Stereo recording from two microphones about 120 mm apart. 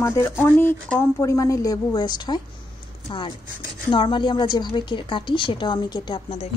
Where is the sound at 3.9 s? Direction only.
45° left (ahead or behind).